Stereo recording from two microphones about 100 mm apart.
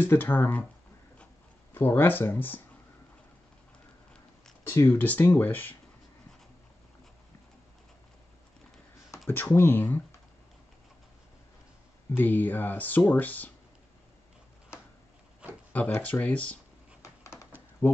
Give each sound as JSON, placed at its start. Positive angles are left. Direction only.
{"t": 0.0, "sound": "speech", "side_deg": 20}
{"t": 1.7, "sound": "speech", "side_deg": 20}
{"t": 4.6, "sound": "speech", "side_deg": 25}
{"t": 9.6, "sound": "speech", "side_deg": 20}
{"t": 12.2, "sound": "speech", "side_deg": 20}
{"t": 15.7, "sound": "speech", "side_deg": 15}
{"t": 17.0, "sound": "a sound", "side_deg": 30}
{"t": 17.8, "sound": "speech", "side_deg": 25}